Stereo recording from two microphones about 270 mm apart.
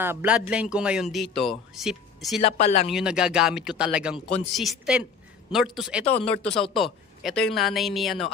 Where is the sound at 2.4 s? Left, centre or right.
Left.